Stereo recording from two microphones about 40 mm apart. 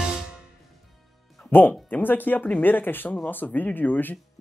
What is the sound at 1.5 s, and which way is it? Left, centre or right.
Speech, left.